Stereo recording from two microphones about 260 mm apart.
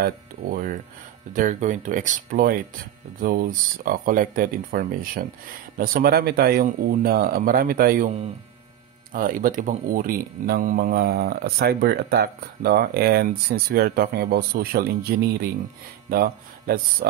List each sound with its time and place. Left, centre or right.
0.0 s speech: right
9.1 s speech: right